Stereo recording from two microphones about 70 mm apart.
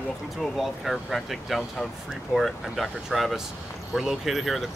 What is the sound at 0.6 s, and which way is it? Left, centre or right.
Speech, centre.